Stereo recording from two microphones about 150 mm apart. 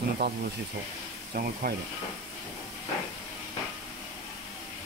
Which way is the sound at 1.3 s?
75° right (ahead or behind).